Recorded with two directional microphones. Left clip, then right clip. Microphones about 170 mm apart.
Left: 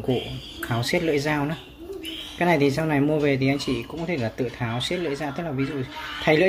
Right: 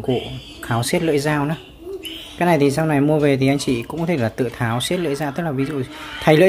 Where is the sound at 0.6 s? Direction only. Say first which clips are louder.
Right 4 dB; 20° right (ahead or behind).